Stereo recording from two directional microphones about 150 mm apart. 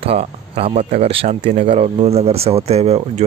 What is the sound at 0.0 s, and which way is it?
Speech, 40° right (ahead or behind).